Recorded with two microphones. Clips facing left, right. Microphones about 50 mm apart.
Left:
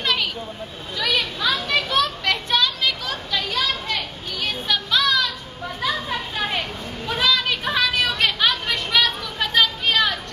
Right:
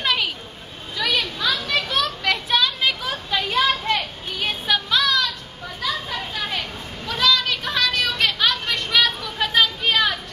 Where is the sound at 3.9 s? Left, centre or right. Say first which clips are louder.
Right 3 dB; centre.